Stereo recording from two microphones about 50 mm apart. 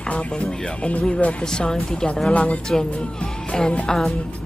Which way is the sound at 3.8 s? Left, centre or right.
Centre.